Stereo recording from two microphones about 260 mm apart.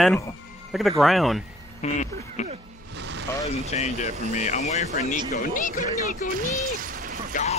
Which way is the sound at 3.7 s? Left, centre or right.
Left.